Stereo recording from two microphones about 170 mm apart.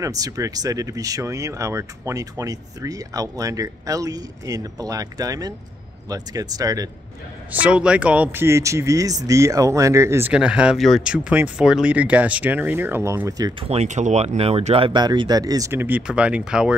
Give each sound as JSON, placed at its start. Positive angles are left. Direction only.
{"t": 0.0, "sound": "speech", "side_deg": -20}
{"t": 7.6, "sound": "speech", "side_deg": -5}
{"t": 13.6, "sound": "speech", "side_deg": -35}